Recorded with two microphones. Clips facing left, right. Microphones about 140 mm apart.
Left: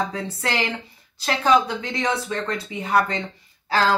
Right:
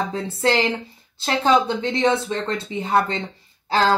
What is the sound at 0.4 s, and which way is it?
Speech, 30° right (ahead or behind).